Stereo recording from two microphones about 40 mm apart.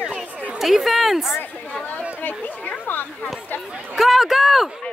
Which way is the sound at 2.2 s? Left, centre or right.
Left.